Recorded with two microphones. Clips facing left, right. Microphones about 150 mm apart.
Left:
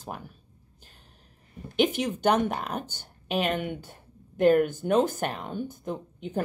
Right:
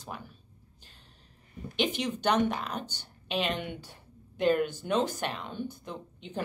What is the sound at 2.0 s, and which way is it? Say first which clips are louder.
A woman's voice: left 3 dB; 45° left (ahead or behind).